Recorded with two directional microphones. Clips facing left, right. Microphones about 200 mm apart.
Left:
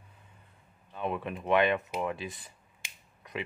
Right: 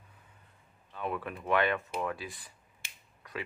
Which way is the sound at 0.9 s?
20° left (ahead or behind).